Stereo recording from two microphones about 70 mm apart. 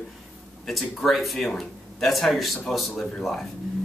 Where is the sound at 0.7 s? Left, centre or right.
Centre.